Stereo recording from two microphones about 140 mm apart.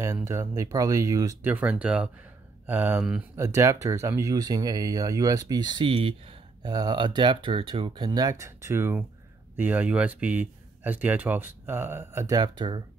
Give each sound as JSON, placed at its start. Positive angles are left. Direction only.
{"t": 0.0, "sound": "speech", "side_deg": -20}
{"t": 3.3, "sound": "speech", "side_deg": -20}
{"t": 6.6, "sound": "speech", "side_deg": -25}